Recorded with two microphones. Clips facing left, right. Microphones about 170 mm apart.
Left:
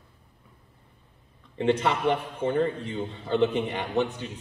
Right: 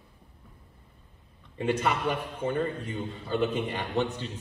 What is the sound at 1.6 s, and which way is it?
A man's voice, 25° left (ahead or behind).